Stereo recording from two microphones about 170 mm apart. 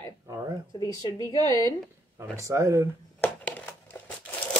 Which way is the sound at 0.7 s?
20° left (ahead or behind).